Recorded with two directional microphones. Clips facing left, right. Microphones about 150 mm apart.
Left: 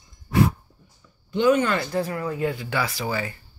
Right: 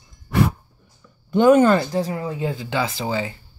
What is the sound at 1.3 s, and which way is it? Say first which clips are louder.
Speech: right 6 dB; 45° right (ahead or behind).